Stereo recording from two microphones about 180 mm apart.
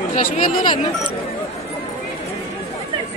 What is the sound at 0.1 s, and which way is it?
Speech, 45° left (ahead or behind).